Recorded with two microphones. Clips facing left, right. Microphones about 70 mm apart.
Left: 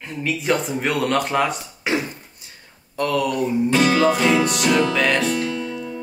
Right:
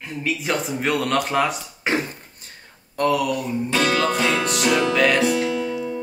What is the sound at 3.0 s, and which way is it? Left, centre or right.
Speech, right.